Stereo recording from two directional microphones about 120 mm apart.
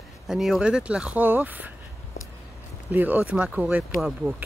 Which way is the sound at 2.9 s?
15° right (ahead or behind).